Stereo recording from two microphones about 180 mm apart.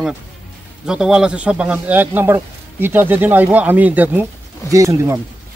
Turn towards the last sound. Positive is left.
turn(degrees=-15)  # may be behind; listen again after turning